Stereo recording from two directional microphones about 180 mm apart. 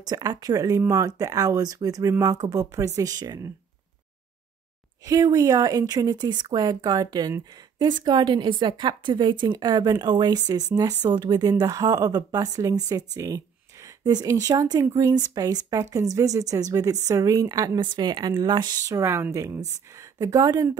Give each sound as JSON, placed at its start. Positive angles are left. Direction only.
{"t": 0.0, "sound": "a woman's voice", "side_deg": -20}
{"t": 5.0, "sound": "a woman's voice", "side_deg": -20}